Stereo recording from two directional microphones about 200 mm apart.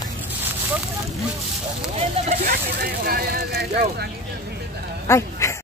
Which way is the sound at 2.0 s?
35° right (ahead or behind).